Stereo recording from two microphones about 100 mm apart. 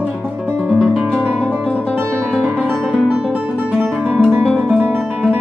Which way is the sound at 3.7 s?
15° right (ahead or behind).